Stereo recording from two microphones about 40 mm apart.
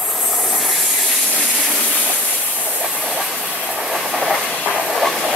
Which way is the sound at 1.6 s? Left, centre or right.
Centre.